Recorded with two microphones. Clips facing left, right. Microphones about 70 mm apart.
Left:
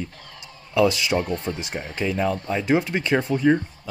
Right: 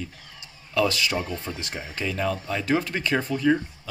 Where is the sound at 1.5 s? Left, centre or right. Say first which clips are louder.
Left 5 dB; centre.